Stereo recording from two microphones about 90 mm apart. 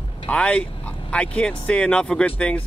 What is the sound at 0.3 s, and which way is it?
Speech, 15° left (ahead or behind).